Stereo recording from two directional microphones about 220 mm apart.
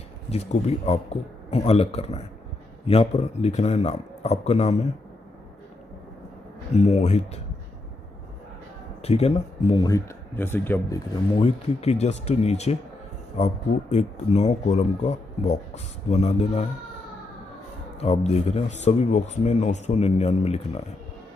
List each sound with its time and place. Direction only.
0.3 s speech: 30° left (ahead or behind)
6.7 s speech: 30° left (ahead or behind)
9.0 s speech: 30° left (ahead or behind); by 11.0 s 10° left (ahead or behind)
11.4 s speech: 30° left (ahead or behind)
17.9 s speech: 30° left (ahead or behind)